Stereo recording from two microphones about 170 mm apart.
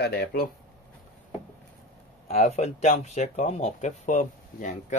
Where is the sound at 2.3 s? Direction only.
40° left (ahead or behind).